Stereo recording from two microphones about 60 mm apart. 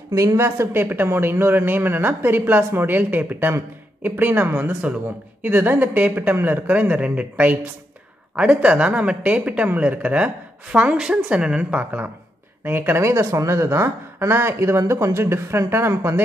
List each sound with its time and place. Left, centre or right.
0.1 s a woman's voice: right
0.4 s speech: right
12.6 s speech: right
13.0 s speech: right